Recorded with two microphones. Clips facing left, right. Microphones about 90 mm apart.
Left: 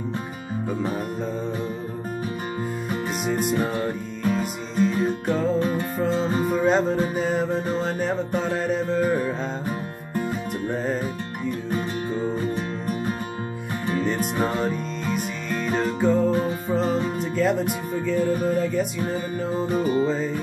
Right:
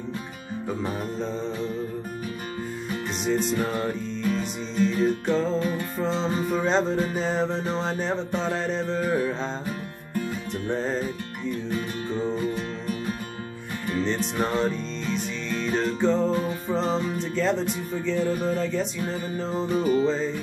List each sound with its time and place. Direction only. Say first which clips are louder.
3.3 s music: right 1 dB; 10° left (ahead or behind)
4.7 s music: left 2 dB; 45° left (ahead or behind)
5.2 s music: even; 10° left (ahead or behind)
5.6 s music: left 3 dB; 30° left (ahead or behind)
6.1 s music: left 2 dB; 45° left (ahead or behind)
6.5 s music: left 3 dB; 5° left (ahead or behind)
10.7 s music: even; 10° left (ahead or behind)
14.4 s music: right 1 dB; 10° left (ahead or behind)
17.2 s speech: left 2 dB; 10° left (ahead or behind)
18.0 s music: left 2 dB; 10° left (ahead or behind)
19.6 s music: right 1 dB; 40° left (ahead or behind)